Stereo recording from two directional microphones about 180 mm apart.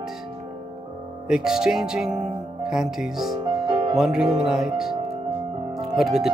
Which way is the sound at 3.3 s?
25° right (ahead or behind).